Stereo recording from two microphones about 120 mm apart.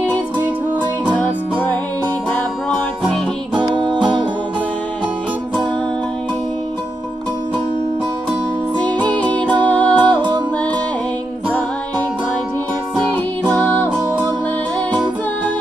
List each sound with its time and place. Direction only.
1.0 s music: 10° left (ahead or behind)
3.5 s music: 40° right (ahead or behind)
8.8 s music: 10° left (ahead or behind)